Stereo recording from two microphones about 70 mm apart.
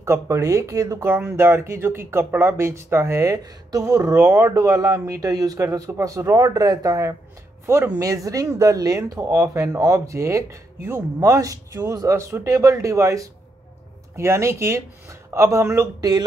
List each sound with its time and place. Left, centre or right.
0.0 s speech: right
1.3 s speech: right
4.5 s speech: right
5.9 s speech: right
7.6 s speech: right
8.0 s speech: right
12.2 s speech: right
12.4 s speech: right
16.0 s speech: right